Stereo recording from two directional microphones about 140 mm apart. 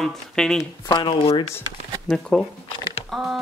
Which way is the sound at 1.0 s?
40° left (ahead or behind).